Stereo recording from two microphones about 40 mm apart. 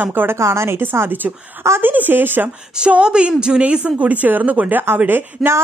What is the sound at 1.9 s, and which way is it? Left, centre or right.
Speech, right.